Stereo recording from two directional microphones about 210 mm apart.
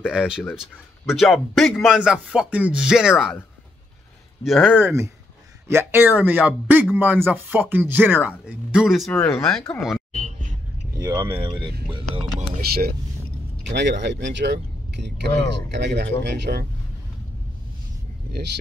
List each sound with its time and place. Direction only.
0.0 s a man's voice: 5° right (ahead or behind)
4.5 s speech: centre (ahead or behind)
11.0 s speech: 15° right (ahead or behind)
13.7 s speech: 55° right (ahead or behind)